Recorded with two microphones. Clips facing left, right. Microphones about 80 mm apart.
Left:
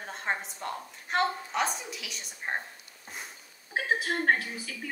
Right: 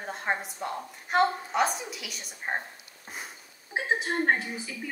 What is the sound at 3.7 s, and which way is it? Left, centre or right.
A woman's voice, right.